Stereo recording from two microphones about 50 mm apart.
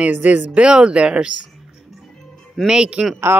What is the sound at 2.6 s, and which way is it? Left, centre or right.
Speech, centre.